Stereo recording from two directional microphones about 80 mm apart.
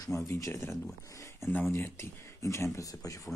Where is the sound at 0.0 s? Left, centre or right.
Left.